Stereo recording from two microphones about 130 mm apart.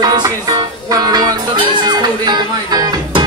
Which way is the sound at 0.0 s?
30° right (ahead or behind).